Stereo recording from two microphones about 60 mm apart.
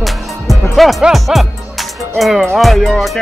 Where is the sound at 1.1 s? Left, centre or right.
Centre.